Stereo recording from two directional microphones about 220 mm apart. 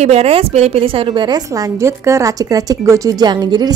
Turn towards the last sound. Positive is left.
turn(degrees=-20)  # may be behind; listen again after turning